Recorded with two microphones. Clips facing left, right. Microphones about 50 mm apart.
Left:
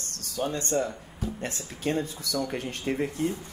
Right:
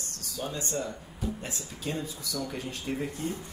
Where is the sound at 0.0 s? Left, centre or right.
Left.